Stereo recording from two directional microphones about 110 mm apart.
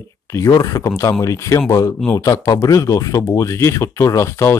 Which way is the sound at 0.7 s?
25° left (ahead or behind).